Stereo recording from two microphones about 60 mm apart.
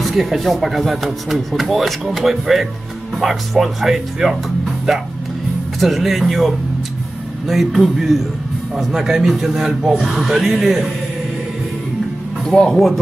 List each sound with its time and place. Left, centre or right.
0.0 s speech: centre
12.4 s speech: centre